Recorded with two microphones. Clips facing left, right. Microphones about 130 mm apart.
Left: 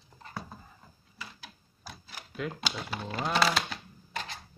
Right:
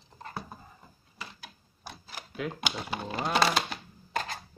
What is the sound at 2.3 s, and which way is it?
Speech, centre (ahead or behind).